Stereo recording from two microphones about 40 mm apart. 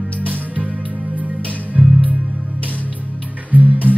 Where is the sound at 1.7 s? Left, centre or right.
Right.